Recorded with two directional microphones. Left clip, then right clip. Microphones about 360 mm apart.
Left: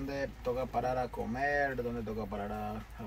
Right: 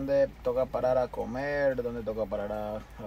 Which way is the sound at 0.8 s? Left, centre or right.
Centre.